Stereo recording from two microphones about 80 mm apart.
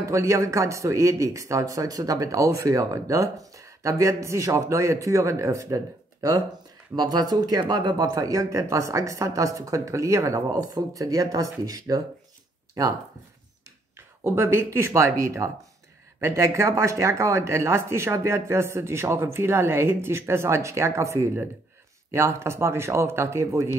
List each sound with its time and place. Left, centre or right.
0.0 s speech: right
7.0 s a woman's voice: right
13.9 s speech: right